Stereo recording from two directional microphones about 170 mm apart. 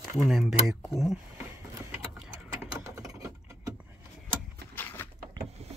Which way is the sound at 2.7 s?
20° right (ahead or behind).